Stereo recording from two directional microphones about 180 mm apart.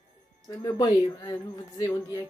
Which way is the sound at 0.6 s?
20° left (ahead or behind).